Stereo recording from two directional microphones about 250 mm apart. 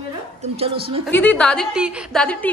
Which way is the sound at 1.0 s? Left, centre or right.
Centre.